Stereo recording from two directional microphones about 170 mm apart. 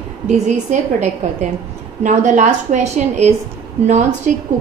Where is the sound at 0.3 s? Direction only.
45° right (ahead or behind).